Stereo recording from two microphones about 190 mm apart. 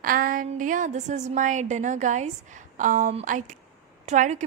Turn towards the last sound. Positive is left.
turn(degrees=-40)  # may be behind; listen again after turning